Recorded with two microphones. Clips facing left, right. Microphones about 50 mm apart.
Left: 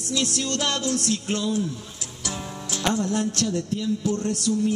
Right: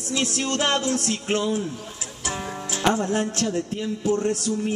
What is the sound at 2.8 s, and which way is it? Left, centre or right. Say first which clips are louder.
Music: right 2 dB; right.